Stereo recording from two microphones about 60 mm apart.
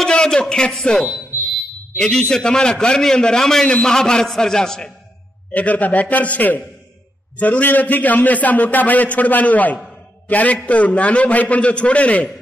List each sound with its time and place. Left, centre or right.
0.0 s a man's voice: centre
5.5 s a man's voice: left